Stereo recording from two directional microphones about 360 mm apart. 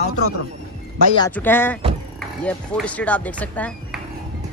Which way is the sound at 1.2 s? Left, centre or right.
Centre.